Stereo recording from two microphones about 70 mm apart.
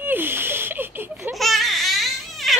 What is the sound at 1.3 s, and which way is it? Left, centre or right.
Baby cry, centre.